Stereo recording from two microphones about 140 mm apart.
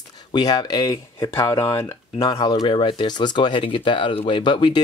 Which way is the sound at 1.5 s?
20° left (ahead or behind).